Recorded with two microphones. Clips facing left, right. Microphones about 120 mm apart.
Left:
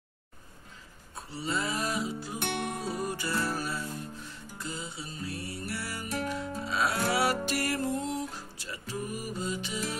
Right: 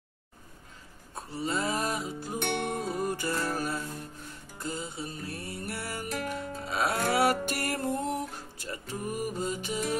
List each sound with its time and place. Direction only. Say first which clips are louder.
1.3 s music: right 2 dB; 45° right (ahead or behind)